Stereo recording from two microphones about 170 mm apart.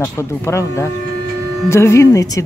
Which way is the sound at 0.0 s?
15° left (ahead or behind).